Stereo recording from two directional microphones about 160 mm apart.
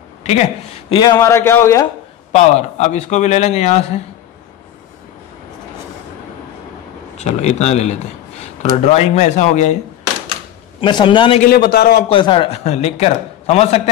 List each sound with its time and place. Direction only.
0.2 s speech: 40° left (ahead or behind)
1.0 s a man's voice: 15° left (ahead or behind)
2.3 s a man's voice: 45° left (ahead or behind)
7.2 s a man's voice: 45° left (ahead or behind)
10.8 s a man's voice: 30° left (ahead or behind)
11.4 s a man's voice: 80° left
12.1 s a man's voice: 30° left (ahead or behind)